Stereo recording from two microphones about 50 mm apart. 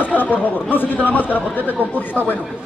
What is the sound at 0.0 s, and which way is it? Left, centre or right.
Speech, left.